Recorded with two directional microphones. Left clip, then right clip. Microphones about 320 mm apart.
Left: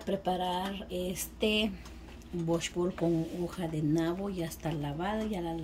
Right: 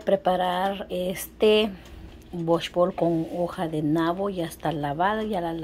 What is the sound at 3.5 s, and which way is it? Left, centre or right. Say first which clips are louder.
Speech: right 4 dB; centre.